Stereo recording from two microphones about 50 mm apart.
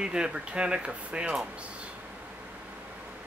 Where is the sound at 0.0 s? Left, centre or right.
Centre.